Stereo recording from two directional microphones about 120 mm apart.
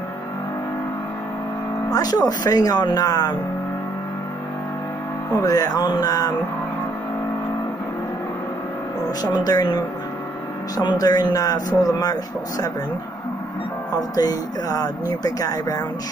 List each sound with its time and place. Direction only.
1.9 s speech: 30° left (ahead or behind)
5.4 s speech: 30° left (ahead or behind)
9.2 s speech: 30° left (ahead or behind)
14.1 s speech: 30° left (ahead or behind)